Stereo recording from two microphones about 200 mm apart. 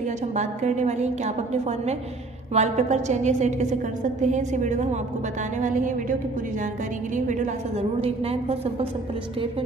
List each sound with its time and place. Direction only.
0.3 s a woman's voice: 35° right (ahead or behind)
7.2 s a woman's voice: 40° right (ahead or behind)